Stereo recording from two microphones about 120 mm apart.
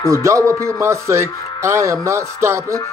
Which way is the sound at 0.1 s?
25° right (ahead or behind).